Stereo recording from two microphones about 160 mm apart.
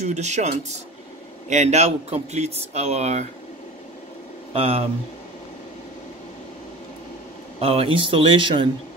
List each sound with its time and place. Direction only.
0.0 s speech: 45° right (ahead or behind)
4.6 s speech: 35° right (ahead or behind)
7.6 s speech: 35° right (ahead or behind)